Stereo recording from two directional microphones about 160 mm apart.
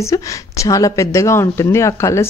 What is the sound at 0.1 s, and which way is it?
Speech, 20° left (ahead or behind).